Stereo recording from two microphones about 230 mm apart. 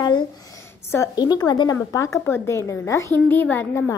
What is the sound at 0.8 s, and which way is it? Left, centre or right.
A child's voice, centre.